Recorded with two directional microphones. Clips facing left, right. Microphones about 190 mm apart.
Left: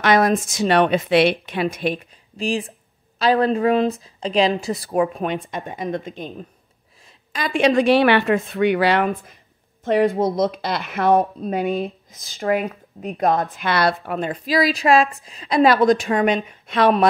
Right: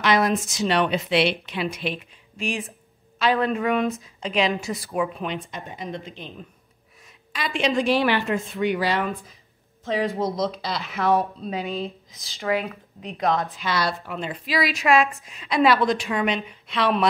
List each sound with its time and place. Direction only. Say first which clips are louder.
0.0 s speech: left 4 dB; 50° left (ahead or behind)
2.3 s a woman's voice: left 5 dB; 35° left (ahead or behind)
4.9 s speech: left 6 dB; 50° left (ahead or behind); by 9.1 s 65° left (ahead or behind)
9.8 s speech: left 7 dB; 55° left (ahead or behind)